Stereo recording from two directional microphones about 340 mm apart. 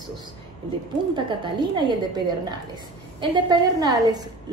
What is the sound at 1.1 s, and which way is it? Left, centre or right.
A woman's voice, centre.